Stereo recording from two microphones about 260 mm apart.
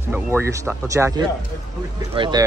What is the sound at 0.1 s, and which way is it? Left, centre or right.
Speech, centre.